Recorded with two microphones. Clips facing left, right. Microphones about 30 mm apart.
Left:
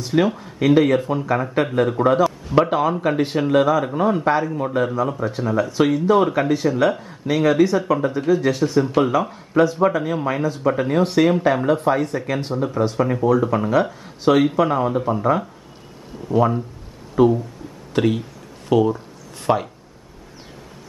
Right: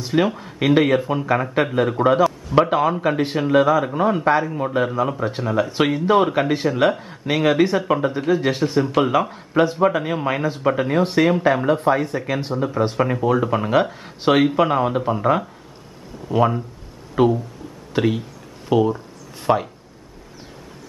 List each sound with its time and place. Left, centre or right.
0.0 s a man's voice: centre; by 10.7 s right
10.7 s a man's voice: centre
12.8 s speech: right
17.2 s speech: right
17.9 s speech: centre